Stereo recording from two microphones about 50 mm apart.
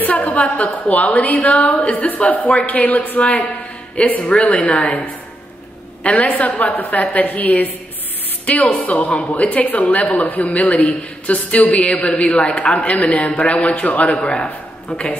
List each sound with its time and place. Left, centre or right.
0.0 s a woman's voice: left
8.7 s a woman's voice: left
14.2 s a man's voice: centre